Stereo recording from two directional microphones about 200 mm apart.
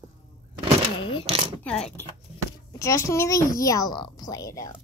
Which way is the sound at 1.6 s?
5° left (ahead or behind).